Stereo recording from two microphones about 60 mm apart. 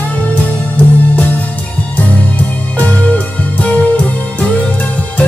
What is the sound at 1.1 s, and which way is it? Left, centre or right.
Music, left.